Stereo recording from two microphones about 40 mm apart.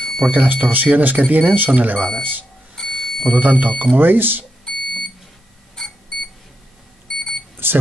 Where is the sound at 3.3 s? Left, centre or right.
Right.